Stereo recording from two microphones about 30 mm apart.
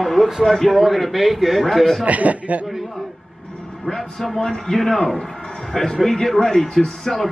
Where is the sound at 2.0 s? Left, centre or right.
Right.